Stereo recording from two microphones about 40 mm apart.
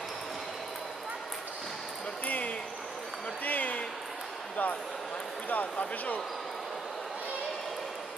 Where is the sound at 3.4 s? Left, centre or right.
Left.